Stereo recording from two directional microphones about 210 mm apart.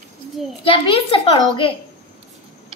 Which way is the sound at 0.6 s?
25° left (ahead or behind).